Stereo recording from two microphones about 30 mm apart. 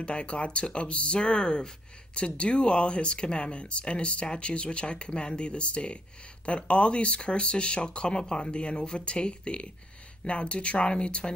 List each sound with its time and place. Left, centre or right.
0.0 s speech: left